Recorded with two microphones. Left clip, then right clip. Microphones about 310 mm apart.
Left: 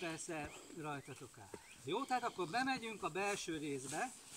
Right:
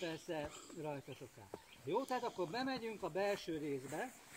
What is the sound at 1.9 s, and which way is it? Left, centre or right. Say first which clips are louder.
Speech: even; left.